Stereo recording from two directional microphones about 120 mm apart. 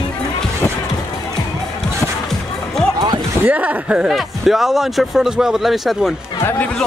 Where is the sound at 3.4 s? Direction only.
15° right (ahead or behind).